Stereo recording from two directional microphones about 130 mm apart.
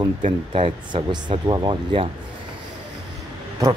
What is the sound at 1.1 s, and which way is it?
Speech, 35° right (ahead or behind).